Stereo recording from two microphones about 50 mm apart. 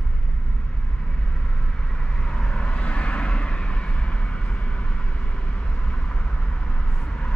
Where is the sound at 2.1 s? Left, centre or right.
Centre.